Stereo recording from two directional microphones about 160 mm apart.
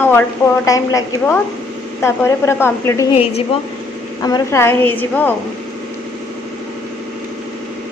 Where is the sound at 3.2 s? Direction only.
35° left (ahead or behind).